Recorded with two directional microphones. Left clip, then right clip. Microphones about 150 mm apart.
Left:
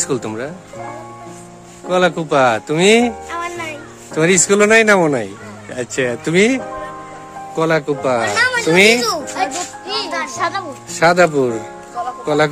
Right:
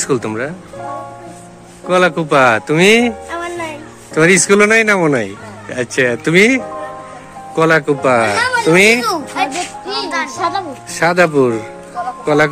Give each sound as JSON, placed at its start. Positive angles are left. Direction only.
{"t": 0.0, "sound": "speech", "side_deg": 15}
{"t": 1.9, "sound": "speech", "side_deg": 15}
{"t": 7.5, "sound": "speech", "side_deg": 0}
{"t": 9.3, "sound": "music", "side_deg": 75}
{"t": 10.4, "sound": "music", "side_deg": 40}
{"t": 11.0, "sound": "music", "side_deg": 5}